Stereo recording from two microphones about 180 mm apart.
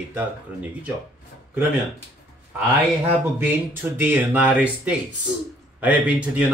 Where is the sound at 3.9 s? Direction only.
10° right (ahead or behind).